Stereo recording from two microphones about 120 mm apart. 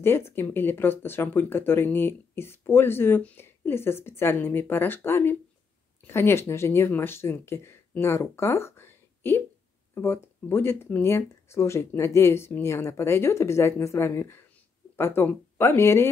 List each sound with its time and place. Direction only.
0.0 s speech: 20° left (ahead or behind)